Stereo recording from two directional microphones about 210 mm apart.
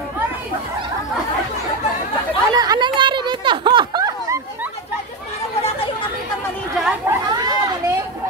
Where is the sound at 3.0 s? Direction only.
20° right (ahead or behind).